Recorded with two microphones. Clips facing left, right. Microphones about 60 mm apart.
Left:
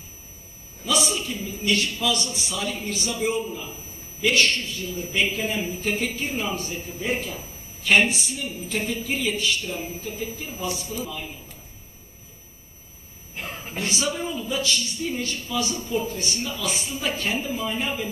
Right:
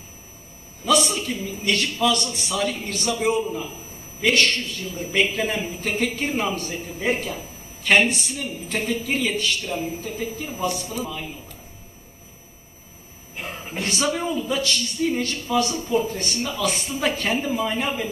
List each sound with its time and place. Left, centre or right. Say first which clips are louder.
0.8 s a man's voice: right 4 dB; right
13.4 s a sound: right 1 dB; centre
13.7 s a man's voice: right 3 dB; right